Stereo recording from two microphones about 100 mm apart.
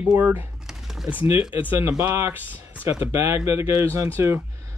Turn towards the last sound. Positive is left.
turn(degrees=-25)  # may be behind; listen again after turning